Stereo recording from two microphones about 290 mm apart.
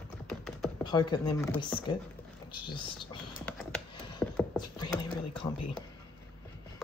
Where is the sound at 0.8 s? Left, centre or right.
Centre.